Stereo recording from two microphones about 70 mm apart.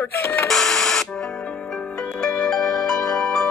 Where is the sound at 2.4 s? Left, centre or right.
Centre.